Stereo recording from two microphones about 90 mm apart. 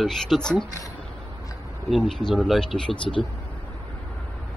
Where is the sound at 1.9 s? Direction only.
5° left (ahead or behind).